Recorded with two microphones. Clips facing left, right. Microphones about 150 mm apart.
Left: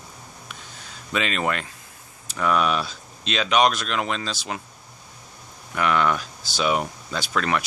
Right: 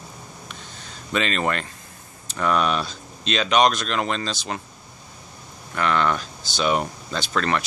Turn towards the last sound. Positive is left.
turn(degrees=5)  # may be behind; listen again after turning